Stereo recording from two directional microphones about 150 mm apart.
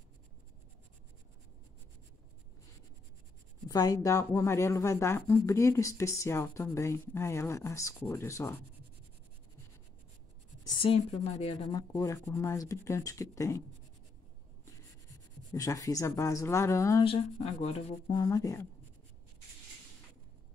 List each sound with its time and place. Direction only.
3.6 s speech: 25° left (ahead or behind)
10.6 s a woman's voice: 30° left (ahead or behind)
11.7 s speech: 20° left (ahead or behind)
15.5 s speech: 20° left (ahead or behind)
17.0 s speech: 45° left (ahead or behind)
18.1 s speech: 25° left (ahead or behind)